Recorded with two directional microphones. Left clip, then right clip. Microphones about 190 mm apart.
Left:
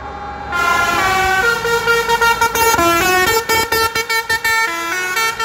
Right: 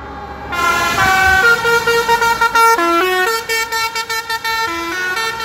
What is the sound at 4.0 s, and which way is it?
Vehicle, 40° left (ahead or behind).